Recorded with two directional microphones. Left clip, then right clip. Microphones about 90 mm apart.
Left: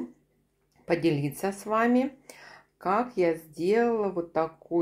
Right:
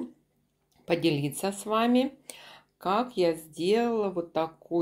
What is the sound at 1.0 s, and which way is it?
Speech, 40° right (ahead or behind).